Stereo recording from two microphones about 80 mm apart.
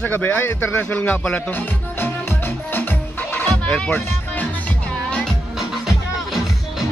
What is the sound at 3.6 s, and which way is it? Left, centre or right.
Speech, centre.